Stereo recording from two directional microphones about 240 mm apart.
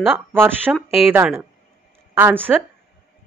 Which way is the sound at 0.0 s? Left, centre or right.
Centre.